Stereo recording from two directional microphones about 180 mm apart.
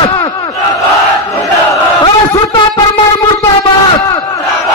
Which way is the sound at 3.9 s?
20° left (ahead or behind).